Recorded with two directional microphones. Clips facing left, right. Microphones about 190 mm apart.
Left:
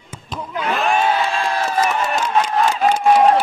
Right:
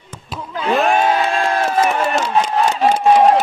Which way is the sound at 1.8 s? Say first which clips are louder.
Right 2 dB; 30° right (ahead or behind).